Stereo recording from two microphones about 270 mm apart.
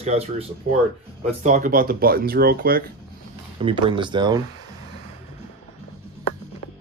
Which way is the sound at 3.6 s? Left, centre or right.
Centre.